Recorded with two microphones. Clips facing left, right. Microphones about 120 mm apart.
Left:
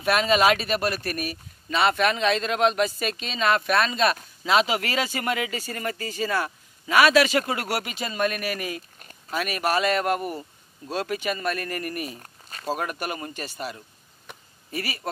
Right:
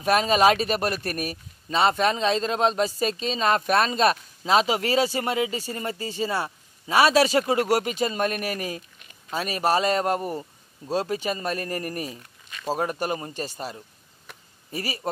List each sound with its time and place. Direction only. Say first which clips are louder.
0.0 s speech: right 1 dB; 35° right (ahead or behind)
12.2 s a sound: left 1 dB; 40° left (ahead or behind)
12.7 s speech: right 5 dB; 30° right (ahead or behind)